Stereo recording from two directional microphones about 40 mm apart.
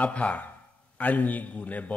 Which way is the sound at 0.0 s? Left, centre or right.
Left.